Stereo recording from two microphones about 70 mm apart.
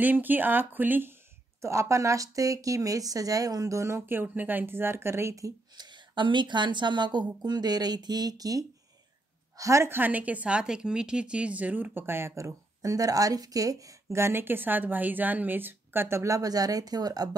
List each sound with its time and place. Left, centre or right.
0.0 s speech: right
1.6 s speech: right
4.3 s a woman's voice: right
5.8 s speech: right
9.6 s a woman's voice: right
9.8 s a woman's voice: right